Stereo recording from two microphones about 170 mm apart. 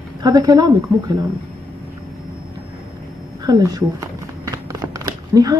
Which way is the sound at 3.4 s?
20° right (ahead or behind).